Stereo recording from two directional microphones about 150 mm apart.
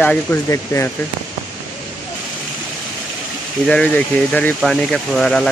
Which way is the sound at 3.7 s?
10° left (ahead or behind).